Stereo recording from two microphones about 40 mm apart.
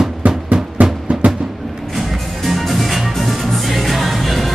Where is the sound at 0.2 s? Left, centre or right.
Right.